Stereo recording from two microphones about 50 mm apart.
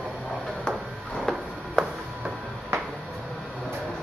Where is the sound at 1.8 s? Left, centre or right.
Centre.